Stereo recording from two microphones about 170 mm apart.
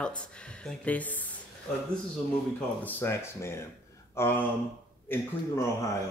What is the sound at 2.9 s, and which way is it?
Speech, 15° left (ahead or behind).